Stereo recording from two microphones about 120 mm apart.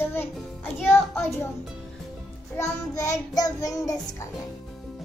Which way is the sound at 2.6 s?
30° left (ahead or behind).